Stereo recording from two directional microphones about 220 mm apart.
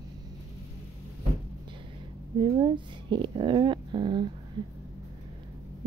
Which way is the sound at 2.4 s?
20° right (ahead or behind).